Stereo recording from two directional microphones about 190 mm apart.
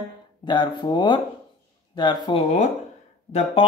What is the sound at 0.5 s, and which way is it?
Speech, 25° left (ahead or behind).